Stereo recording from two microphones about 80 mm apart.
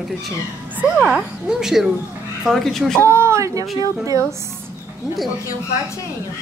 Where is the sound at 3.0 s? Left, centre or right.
Right.